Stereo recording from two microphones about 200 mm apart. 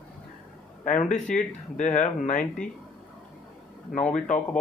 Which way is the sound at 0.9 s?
40° left (ahead or behind).